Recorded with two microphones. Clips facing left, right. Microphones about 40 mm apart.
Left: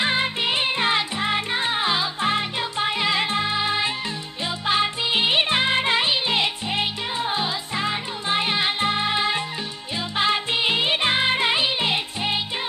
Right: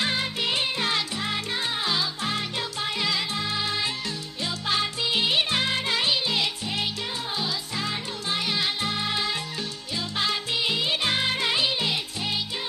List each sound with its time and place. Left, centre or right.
0.0 s music: left